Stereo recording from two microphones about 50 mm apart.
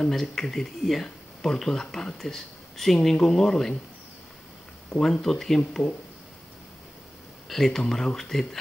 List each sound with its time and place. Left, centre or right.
0.1 s speech: centre
4.9 s speech: centre
5.2 s speech: centre
7.4 s speech: centre